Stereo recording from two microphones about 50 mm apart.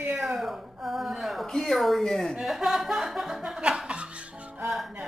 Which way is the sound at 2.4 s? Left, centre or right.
Centre.